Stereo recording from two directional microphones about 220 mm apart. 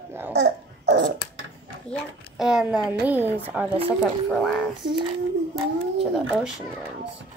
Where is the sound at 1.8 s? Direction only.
Centre (ahead or behind).